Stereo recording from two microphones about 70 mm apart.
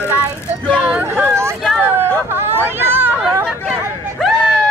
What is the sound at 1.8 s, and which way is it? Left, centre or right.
Hubbub, right.